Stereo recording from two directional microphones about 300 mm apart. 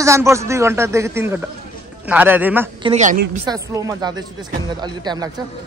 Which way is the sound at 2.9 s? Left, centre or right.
Right.